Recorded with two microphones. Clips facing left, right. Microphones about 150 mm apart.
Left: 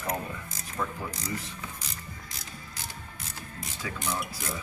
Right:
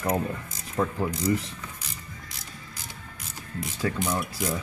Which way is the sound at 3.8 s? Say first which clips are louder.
Right 9 dB; 50° right (ahead or behind).